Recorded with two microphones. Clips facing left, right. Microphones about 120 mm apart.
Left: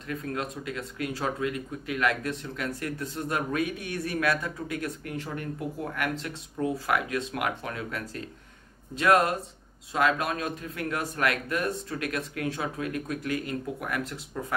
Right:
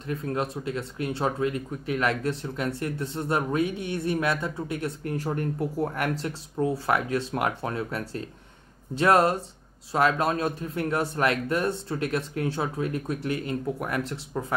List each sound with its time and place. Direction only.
0.0 s speech: 30° right (ahead or behind)
5.1 s speech: 40° right (ahead or behind)